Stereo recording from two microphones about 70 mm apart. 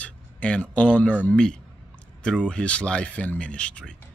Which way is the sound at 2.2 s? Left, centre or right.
Centre.